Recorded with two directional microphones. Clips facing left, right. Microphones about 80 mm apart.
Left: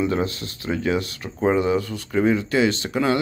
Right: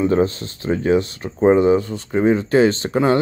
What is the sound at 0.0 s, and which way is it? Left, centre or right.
Speech, right.